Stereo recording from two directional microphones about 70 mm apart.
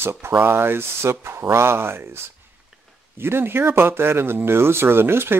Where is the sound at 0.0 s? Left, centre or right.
Right.